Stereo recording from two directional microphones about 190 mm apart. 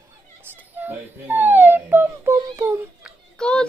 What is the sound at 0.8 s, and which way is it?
Whimper, 10° right (ahead or behind).